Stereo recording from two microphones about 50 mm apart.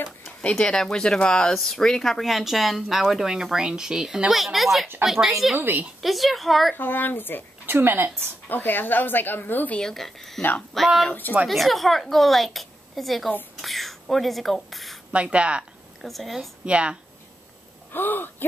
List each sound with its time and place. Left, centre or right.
0.4 s speech: left
0.7 s speech: centre
1.5 s speech: centre
5.6 s a woman's voice: right
6.0 s speech: centre
6.7 s speech: left
7.6 s a woman's voice: right
8.5 s speech: left
9.8 s speech: centre
15.1 s speech: right
16.0 s speech: centre
16.6 s speech: right
17.9 s speech: left